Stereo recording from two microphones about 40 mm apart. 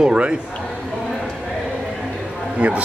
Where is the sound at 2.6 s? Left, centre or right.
Right.